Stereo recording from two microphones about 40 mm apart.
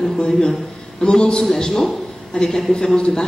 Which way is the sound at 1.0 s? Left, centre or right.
Left.